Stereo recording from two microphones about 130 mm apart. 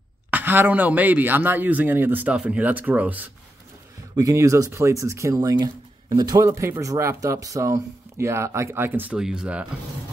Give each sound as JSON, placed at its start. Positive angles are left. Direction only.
{"t": 0.3, "sound": "a man's voice", "side_deg": -15}
{"t": 4.2, "sound": "speech", "side_deg": -25}